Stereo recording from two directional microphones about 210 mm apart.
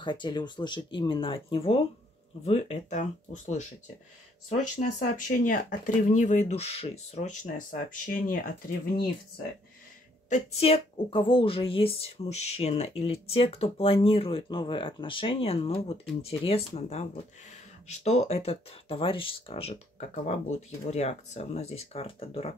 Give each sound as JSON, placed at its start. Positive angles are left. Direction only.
{"t": 0.0, "sound": "a woman's voice", "side_deg": 20}
{"t": 10.6, "sound": "a woman's voice", "side_deg": 25}